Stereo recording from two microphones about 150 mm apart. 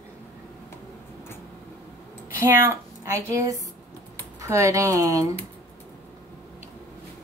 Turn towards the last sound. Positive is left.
turn(degrees=-20)  # may be behind; listen again after turning